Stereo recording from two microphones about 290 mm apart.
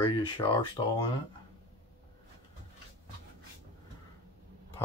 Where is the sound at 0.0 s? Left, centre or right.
Centre.